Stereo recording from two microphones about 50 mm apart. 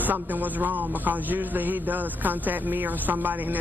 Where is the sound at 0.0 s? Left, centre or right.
Right.